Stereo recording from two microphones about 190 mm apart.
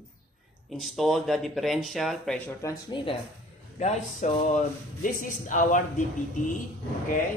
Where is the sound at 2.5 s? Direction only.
15° left (ahead or behind).